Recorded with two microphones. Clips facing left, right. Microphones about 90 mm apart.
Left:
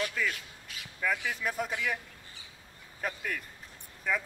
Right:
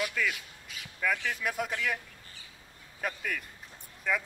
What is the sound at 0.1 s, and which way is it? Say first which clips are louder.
A man's voice: right 1 dB; centre (ahead or behind).